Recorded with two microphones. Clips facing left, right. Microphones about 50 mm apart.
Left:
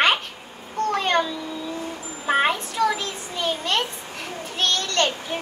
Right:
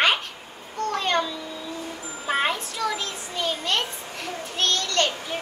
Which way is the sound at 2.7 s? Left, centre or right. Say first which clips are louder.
Left 5 dB; centre.